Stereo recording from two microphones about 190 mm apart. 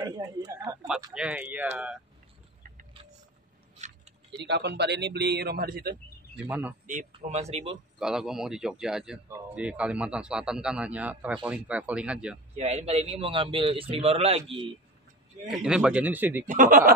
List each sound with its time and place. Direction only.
0.0 s a man's voice: 20° right (ahead or behind)
1.1 s a man's voice: 5° right (ahead or behind)
3.7 s a sound: 35° right (ahead or behind)
4.5 s speech: 60° right (ahead or behind)
7.1 s a man's voice: 35° right (ahead or behind)
8.0 s a man's voice: centre (ahead or behind)
12.5 s a man's voice: 35° right (ahead or behind)
15.5 s a man's voice: 5° right (ahead or behind)
16.4 s speech: 45° right (ahead or behind)